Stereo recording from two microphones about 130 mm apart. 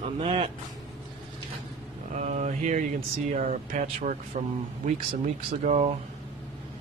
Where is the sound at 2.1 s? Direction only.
70° right (ahead or behind).